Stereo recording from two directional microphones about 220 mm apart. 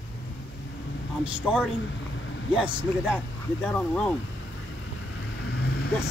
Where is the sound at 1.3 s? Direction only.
5° right (ahead or behind).